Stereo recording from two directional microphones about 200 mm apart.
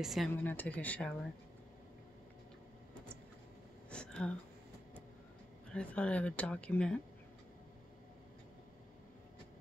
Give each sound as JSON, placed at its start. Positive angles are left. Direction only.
{"t": 0.0, "sound": "speech", "side_deg": 0}
{"t": 3.9, "sound": "a sound", "side_deg": 5}
{"t": 5.7, "sound": "speech", "side_deg": 5}